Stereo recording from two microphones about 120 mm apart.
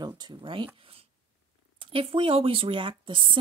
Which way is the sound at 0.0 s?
40° right (ahead or behind).